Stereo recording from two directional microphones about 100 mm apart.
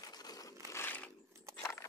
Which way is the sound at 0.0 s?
40° left (ahead or behind).